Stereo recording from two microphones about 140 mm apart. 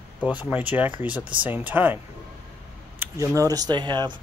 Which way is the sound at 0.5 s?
10° right (ahead or behind).